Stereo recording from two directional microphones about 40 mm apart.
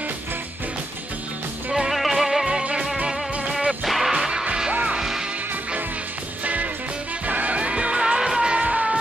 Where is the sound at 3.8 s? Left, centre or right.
Centre.